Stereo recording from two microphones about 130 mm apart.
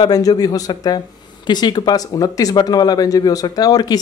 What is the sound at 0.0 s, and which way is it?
Speech, 30° left (ahead or behind).